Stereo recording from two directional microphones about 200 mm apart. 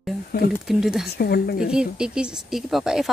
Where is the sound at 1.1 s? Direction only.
50° left (ahead or behind).